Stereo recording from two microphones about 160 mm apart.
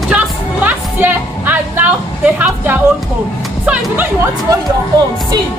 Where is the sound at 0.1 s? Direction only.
10° right (ahead or behind).